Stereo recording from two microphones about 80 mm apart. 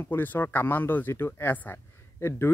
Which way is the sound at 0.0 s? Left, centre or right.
Left.